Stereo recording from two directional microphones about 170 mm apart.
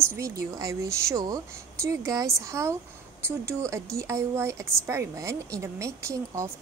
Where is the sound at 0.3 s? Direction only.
20° right (ahead or behind).